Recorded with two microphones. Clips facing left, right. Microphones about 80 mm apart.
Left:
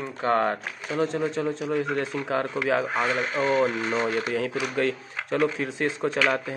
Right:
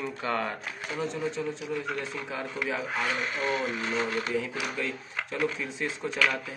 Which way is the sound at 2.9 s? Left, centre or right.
Left.